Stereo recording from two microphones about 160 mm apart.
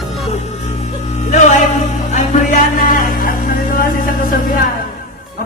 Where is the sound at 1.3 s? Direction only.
50° left (ahead or behind).